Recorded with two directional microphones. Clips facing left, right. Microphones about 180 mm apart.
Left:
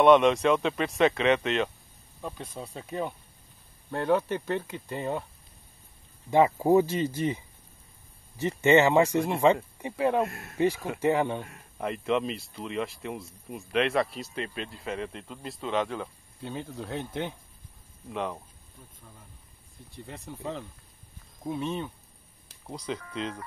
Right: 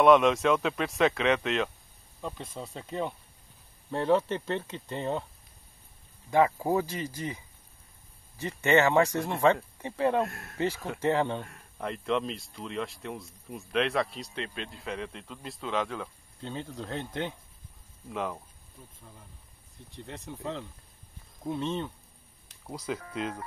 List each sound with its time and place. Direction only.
0.0 s speech: centre (ahead or behind)
6.3 s speech: 20° left (ahead or behind); by 16.1 s centre (ahead or behind)
16.3 s speech: 10° left (ahead or behind)
18.1 s speech: centre (ahead or behind)
20.1 s speech: centre (ahead or behind)
22.5 s music: 5° right (ahead or behind)